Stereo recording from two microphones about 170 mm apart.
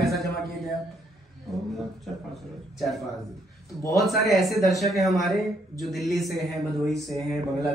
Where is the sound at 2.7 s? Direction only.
Centre (ahead or behind).